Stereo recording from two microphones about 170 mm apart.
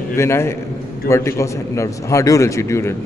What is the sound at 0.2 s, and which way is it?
A man's voice, 15° left (ahead or behind).